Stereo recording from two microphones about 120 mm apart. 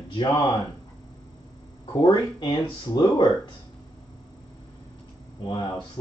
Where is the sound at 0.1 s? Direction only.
35° left (ahead or behind).